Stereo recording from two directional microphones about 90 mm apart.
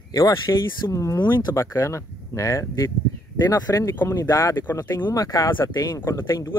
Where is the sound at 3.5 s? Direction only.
45° left (ahead or behind).